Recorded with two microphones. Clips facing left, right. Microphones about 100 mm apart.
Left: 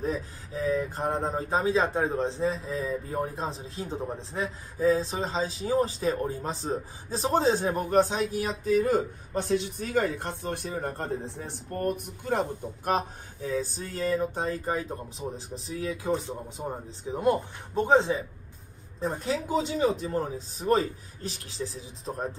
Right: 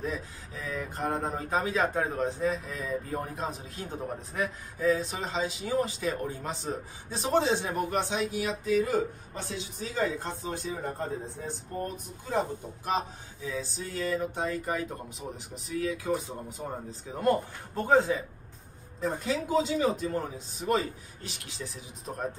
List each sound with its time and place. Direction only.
0.0 s speech: 35° left (ahead or behind)
18.9 s speech: 35° left (ahead or behind)